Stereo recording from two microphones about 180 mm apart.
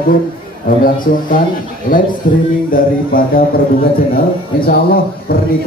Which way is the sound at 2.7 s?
55° left (ahead or behind).